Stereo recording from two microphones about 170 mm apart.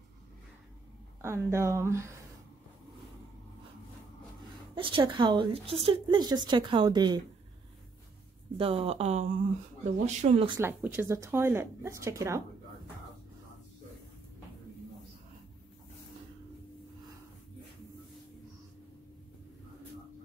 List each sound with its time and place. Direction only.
1.2 s speech: 15° right (ahead or behind)
4.7 s speech: 30° right (ahead or behind)
8.5 s speech: 35° right (ahead or behind)
10.6 s speech: 10° right (ahead or behind)